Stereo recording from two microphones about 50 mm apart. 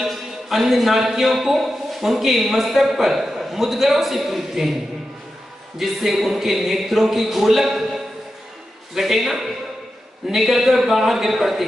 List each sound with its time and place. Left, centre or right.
0.0 s a man's voice: centre
5.8 s a man's voice: centre